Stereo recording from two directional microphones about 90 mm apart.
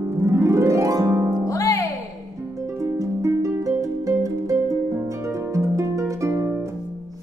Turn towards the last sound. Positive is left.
turn(degrees=-30)  # may be behind; listen again after turning